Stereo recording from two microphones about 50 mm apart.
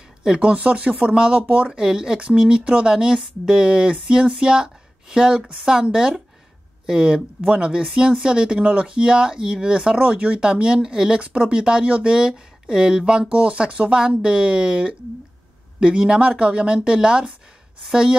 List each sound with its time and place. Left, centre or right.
0.2 s speech: centre